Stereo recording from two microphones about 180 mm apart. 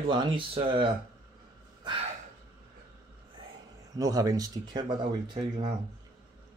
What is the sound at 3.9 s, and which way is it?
Speech, 20° right (ahead or behind).